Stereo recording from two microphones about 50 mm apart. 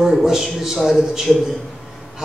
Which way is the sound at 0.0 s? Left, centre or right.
Centre.